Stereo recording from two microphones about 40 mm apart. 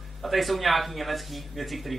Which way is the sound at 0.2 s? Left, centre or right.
Centre.